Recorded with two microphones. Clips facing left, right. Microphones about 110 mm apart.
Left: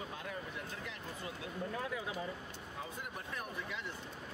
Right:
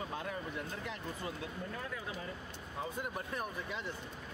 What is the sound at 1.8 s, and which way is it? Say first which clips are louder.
Speech: left 2 dB; 15° left (ahead or behind).